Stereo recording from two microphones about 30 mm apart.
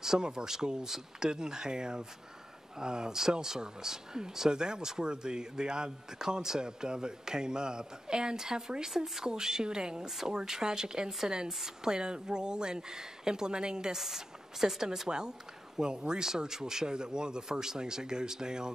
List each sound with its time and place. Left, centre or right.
0.2 s speech: right
10.0 s speech: centre
11.9 s speech: right
13.9 s speech: centre